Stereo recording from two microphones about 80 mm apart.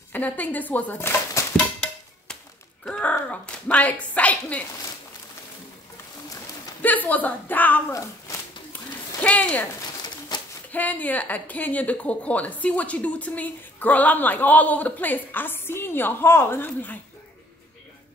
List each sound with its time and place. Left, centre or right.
0.1 s speech: centre
2.9 s speech: centre
6.8 s speech: left
9.2 s speech: centre
10.3 s a sound: left
10.7 s speech: centre